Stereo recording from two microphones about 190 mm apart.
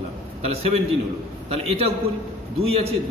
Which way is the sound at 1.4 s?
30° right (ahead or behind).